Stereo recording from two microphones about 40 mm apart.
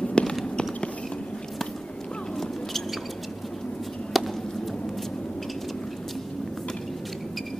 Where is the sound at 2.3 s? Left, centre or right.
Centre.